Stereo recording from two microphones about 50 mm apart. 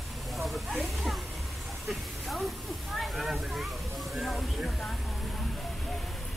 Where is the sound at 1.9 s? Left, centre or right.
Centre.